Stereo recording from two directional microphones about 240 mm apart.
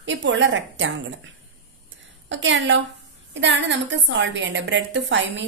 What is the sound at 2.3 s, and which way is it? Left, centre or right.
A woman's voice, right.